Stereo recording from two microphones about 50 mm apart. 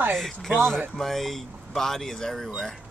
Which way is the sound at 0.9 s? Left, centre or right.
Centre.